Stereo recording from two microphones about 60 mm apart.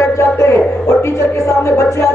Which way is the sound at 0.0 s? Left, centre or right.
Left.